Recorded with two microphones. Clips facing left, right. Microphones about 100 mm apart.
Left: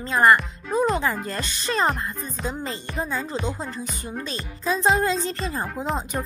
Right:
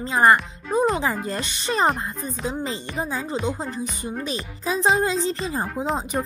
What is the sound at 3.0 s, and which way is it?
Music, 5° right (ahead or behind).